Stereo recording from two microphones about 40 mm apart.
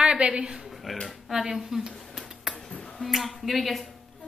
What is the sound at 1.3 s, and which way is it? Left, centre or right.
Speech, centre.